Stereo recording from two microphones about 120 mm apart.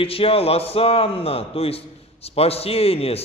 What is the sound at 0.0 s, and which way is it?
A man's voice, 50° left (ahead or behind).